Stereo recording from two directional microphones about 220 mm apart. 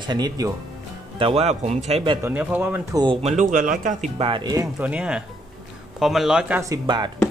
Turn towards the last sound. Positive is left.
turn(degrees=-20)  # may be behind; listen again after turning